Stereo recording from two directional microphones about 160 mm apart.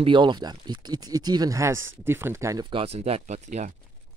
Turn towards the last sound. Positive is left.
turn(degrees=-45)  # may be behind; listen again after turning